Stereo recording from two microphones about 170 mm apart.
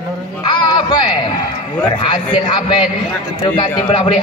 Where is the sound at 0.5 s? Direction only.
25° left (ahead or behind).